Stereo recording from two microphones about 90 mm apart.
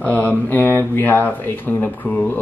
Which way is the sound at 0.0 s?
20° left (ahead or behind).